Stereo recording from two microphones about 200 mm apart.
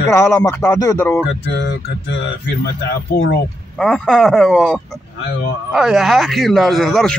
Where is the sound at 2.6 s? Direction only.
55° left (ahead or behind).